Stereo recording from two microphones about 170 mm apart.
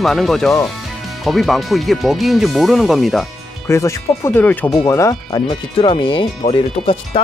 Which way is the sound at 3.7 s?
15° left (ahead or behind).